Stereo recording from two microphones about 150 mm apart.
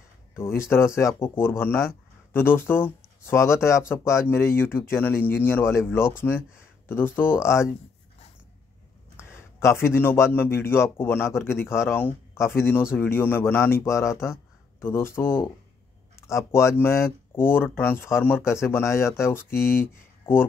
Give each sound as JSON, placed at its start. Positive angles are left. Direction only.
{"t": 0.4, "sound": "speech", "side_deg": 15}
{"t": 9.1, "sound": "speech", "side_deg": 20}